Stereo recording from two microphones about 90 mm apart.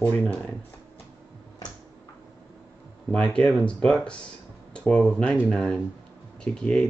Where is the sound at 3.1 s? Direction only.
10° left (ahead or behind).